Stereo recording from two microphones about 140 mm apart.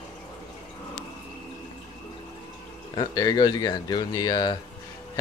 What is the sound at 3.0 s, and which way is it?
Speech, 25° left (ahead or behind).